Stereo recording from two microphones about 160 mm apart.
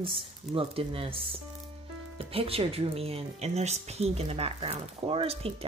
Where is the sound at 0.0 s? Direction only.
35° right (ahead or behind).